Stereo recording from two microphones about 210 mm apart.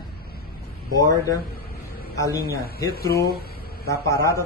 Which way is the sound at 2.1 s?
15° left (ahead or behind).